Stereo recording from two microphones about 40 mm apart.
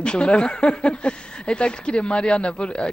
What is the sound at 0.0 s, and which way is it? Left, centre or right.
Speech, left.